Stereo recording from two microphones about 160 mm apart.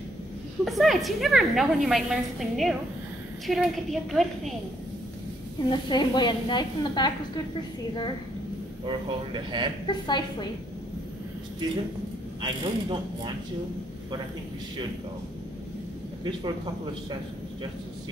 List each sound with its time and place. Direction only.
0.7 s a woman's voice: centre (ahead or behind)
5.7 s speech: 30° left (ahead or behind)
8.8 s speech: 30° right (ahead or behind)
9.8 s speech: 30° left (ahead or behind)
12.4 s speech: 30° right (ahead or behind)